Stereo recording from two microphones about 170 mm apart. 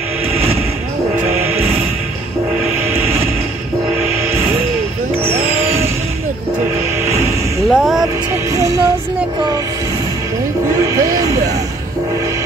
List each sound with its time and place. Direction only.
5.3 s vehicle: 35° right (ahead or behind)
7.7 s music: centre (ahead or behind)
8.3 s music: 20° right (ahead or behind)
10.7 s music: 20° right (ahead or behind)